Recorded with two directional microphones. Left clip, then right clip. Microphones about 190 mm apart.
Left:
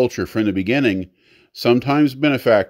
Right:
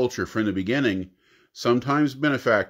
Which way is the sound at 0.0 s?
35° left (ahead or behind).